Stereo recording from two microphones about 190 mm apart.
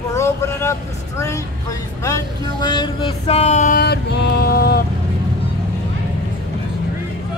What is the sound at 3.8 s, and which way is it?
Music, 60° left (ahead or behind).